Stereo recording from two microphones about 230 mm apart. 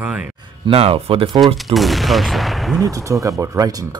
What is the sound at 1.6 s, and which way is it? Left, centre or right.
Speech, centre.